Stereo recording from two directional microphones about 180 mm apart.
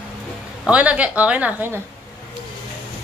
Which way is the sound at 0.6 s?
5° right (ahead or behind).